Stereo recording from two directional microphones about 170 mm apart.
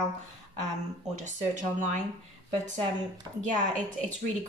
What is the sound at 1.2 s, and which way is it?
Speech, 45° right (ahead or behind).